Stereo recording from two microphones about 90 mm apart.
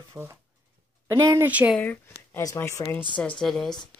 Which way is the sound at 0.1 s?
25° right (ahead or behind).